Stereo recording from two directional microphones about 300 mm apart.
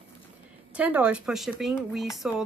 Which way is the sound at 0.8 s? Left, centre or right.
Centre.